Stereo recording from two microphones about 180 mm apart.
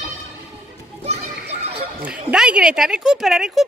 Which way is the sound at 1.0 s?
35° right (ahead or behind).